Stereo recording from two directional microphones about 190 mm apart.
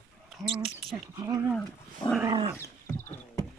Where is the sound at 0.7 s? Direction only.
5° right (ahead or behind).